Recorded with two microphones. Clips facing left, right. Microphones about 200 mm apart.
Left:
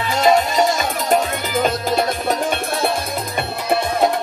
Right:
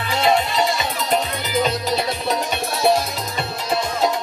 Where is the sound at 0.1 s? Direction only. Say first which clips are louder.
Left 3 dB; 45° left (ahead or behind).